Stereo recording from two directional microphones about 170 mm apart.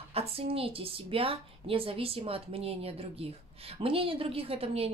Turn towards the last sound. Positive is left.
turn(degrees=-35)  # may be behind; listen again after turning